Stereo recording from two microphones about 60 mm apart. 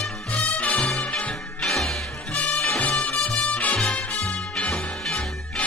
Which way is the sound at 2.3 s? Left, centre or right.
Left.